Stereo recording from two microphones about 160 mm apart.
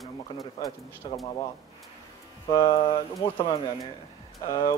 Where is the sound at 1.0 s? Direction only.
30° left (ahead or behind).